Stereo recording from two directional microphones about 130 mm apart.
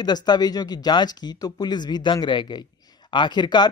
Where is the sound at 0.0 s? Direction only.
35° left (ahead or behind).